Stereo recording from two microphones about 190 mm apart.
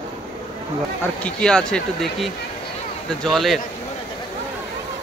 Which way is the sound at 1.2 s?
5° left (ahead or behind).